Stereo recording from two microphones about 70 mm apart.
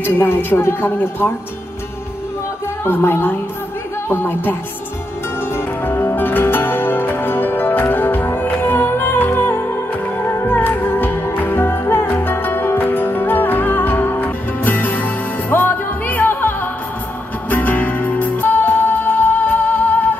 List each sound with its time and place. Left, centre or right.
0.0 s a woman's voice: left
2.8 s a woman's voice: left
5.9 s music: left